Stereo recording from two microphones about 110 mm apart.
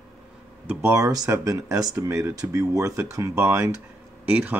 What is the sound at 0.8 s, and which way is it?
Speech, 30° right (ahead or behind).